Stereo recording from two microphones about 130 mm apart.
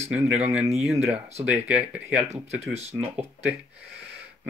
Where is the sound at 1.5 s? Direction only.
10° right (ahead or behind).